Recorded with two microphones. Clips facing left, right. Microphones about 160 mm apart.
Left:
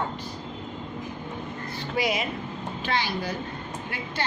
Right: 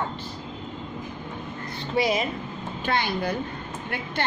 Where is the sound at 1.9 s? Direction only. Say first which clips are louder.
Right 3 dB; 35° right (ahead or behind).